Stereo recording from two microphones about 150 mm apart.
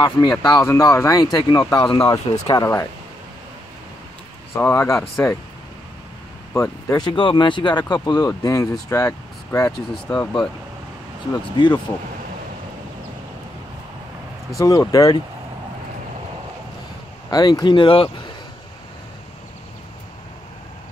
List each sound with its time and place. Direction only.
0.0 s speech: 25° left (ahead or behind)
4.6 s speech: 15° left (ahead or behind)
6.5 s speech: 15° left (ahead or behind)
7.1 s speech: 35° left (ahead or behind)
11.6 s speech: 30° left (ahead or behind)
14.6 s speech: 20° left (ahead or behind)
17.3 s speech: 25° left (ahead or behind)